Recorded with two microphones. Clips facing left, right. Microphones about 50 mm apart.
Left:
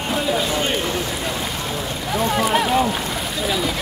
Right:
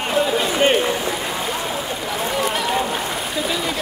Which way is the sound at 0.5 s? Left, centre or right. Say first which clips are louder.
Right 5 dB; right.